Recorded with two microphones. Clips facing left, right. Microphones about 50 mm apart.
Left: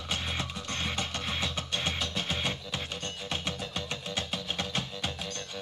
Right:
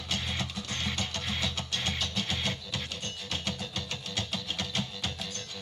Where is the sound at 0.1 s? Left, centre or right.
Left.